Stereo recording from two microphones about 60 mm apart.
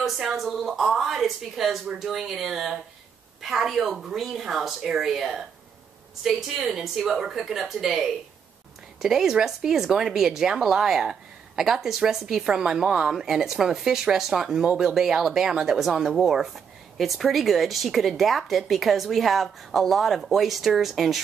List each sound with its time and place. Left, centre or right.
0.0 s speech: centre